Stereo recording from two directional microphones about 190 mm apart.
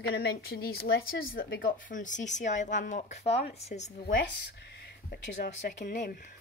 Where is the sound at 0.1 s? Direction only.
55° left (ahead or behind); by 4.2 s 35° left (ahead or behind).